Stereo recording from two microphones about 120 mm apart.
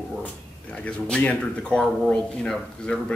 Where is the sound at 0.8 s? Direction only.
10° left (ahead or behind).